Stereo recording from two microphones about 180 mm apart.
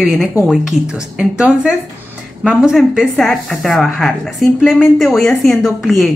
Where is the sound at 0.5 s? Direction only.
5° right (ahead or behind).